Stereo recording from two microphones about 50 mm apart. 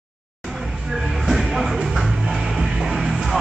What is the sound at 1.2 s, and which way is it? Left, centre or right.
Music, centre.